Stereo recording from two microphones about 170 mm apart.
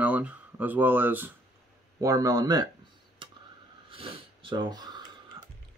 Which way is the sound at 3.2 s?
30° right (ahead or behind).